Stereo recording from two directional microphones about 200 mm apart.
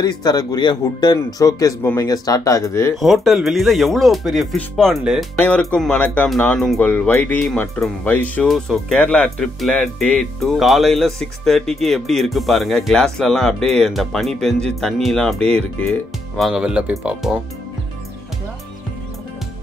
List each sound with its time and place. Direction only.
0.0 s speech: 20° left (ahead or behind)
3.0 s speech: centre (ahead or behind)